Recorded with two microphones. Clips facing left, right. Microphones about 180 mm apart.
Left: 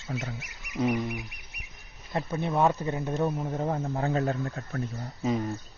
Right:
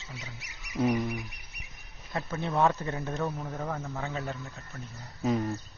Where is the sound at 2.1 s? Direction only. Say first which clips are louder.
Left 3 dB; 15° left (ahead or behind); by 4.2 s 35° left (ahead or behind).